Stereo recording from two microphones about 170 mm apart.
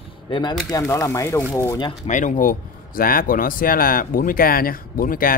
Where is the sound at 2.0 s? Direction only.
50° left (ahead or behind).